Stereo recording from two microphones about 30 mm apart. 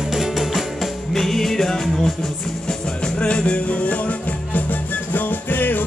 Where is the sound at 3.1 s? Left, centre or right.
Left.